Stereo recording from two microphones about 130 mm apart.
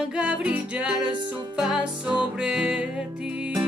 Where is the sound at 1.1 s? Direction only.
35° right (ahead or behind).